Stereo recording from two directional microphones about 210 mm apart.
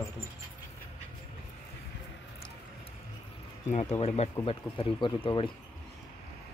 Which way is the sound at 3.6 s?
35° left (ahead or behind).